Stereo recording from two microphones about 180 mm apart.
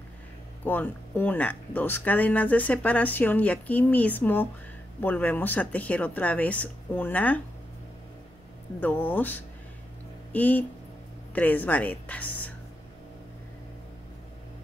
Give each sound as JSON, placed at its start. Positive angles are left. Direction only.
{"t": 0.7, "sound": "speech", "side_deg": 10}
{"t": 8.7, "sound": "speech", "side_deg": 10}